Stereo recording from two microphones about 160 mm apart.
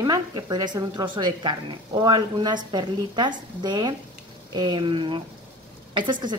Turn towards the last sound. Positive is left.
turn(degrees=-30)  # may be behind; listen again after turning